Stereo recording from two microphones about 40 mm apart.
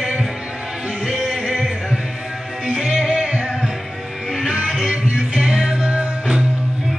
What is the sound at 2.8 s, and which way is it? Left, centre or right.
Music, centre.